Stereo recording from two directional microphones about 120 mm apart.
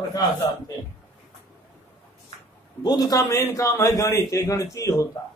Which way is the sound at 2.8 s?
30° left (ahead or behind).